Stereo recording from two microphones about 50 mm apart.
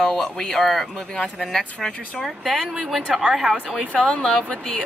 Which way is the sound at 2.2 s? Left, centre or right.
Centre.